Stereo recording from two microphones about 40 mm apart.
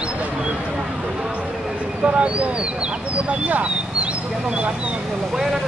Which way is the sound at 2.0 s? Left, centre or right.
Right.